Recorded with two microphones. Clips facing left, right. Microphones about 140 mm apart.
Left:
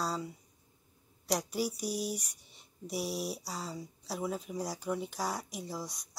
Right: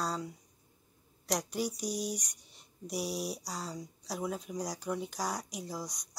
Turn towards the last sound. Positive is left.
turn(degrees=0)  # may be behind; listen again after turning